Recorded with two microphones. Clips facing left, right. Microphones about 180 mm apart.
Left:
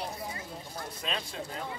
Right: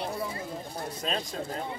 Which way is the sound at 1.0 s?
40° right (ahead or behind).